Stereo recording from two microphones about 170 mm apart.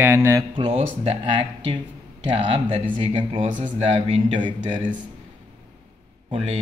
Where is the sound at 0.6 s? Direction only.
30° right (ahead or behind).